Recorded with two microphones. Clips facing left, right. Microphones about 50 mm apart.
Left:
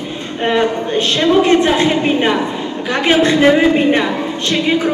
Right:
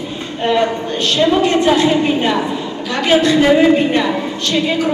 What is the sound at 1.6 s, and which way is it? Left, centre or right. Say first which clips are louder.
A woman's voice: right 1 dB; left.